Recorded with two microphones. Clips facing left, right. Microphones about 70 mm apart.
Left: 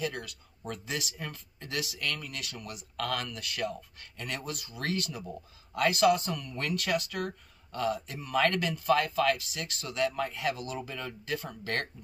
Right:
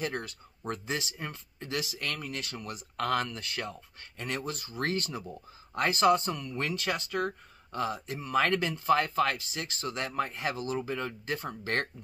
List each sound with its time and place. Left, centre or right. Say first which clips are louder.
0.0 s speech: right 1 dB; right